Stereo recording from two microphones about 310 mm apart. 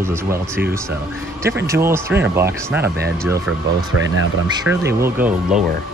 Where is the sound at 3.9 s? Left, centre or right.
Right.